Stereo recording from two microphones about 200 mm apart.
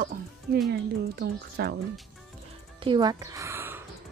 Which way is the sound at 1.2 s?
50° right (ahead or behind).